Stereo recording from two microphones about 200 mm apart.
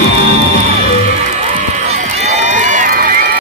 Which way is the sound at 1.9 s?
35° right (ahead or behind).